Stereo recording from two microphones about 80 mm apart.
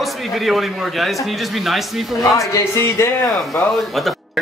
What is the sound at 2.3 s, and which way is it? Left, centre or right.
Speech, left.